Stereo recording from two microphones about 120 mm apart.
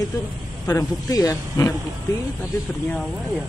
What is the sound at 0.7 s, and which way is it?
Speech, 30° left (ahead or behind).